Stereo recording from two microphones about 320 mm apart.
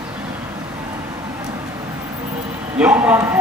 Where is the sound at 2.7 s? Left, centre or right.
Centre.